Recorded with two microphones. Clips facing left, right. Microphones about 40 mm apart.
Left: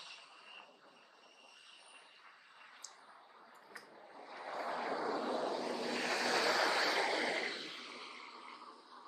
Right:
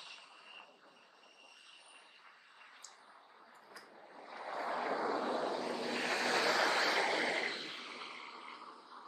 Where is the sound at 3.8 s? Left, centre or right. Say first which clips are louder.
Right 1 dB; centre; by 6.4 s right.